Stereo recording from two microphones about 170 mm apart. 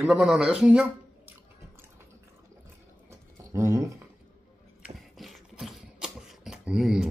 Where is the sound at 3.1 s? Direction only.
15° right (ahead or behind).